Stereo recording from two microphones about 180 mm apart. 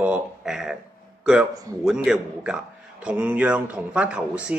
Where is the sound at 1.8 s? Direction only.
5° right (ahead or behind).